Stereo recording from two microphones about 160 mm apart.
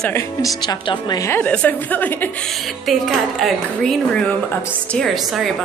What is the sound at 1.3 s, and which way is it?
A woman's voice, 10° left (ahead or behind).